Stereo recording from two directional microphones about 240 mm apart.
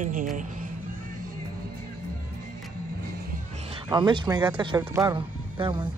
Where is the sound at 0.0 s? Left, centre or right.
Right.